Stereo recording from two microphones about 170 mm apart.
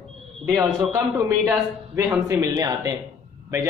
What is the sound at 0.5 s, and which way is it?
A man's voice, 15° right (ahead or behind).